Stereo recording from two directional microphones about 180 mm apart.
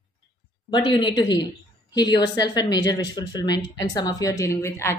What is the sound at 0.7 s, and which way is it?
Speech, 25° left (ahead or behind).